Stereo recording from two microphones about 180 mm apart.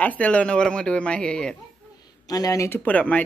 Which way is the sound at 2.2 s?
20° left (ahead or behind).